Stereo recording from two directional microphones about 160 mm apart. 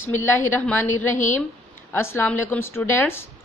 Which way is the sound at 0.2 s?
15° left (ahead or behind).